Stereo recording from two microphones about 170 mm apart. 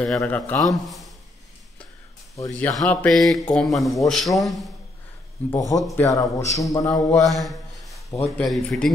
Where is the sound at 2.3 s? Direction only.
20° left (ahead or behind).